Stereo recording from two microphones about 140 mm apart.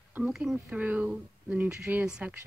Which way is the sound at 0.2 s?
Centre (ahead or behind).